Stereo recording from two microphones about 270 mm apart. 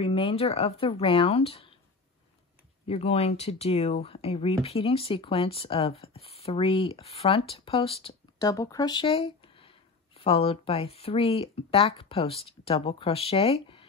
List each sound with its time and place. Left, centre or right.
0.0 s speech: centre
2.9 s speech: left